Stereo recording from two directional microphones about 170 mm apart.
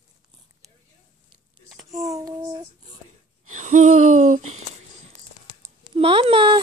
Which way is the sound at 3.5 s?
45° right (ahead or behind).